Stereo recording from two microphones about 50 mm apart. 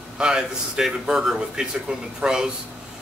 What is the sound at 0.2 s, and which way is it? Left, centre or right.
A man's voice, centre.